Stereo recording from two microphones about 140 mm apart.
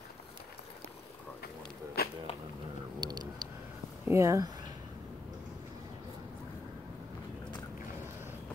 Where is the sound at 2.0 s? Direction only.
90° left.